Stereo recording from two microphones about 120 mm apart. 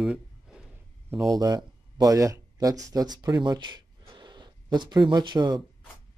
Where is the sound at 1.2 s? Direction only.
30° right (ahead or behind).